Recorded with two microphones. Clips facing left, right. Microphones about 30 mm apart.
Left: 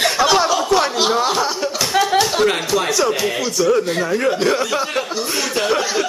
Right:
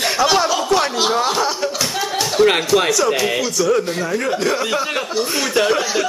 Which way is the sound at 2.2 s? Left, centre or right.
Centre.